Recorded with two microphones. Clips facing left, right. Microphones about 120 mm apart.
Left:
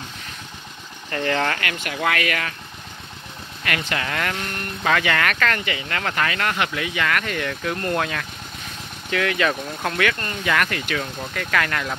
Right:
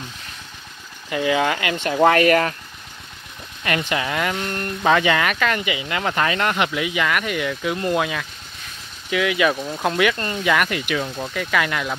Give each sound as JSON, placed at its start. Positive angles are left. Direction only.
{"t": 1.1, "sound": "speech", "side_deg": -10}
{"t": 1.6, "sound": "speech", "side_deg": -25}
{"t": 3.6, "sound": "speech", "side_deg": -20}